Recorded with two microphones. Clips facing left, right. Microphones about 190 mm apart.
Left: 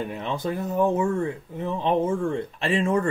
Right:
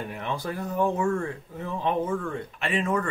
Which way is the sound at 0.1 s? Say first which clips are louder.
Left 3 dB; 20° left (ahead or behind).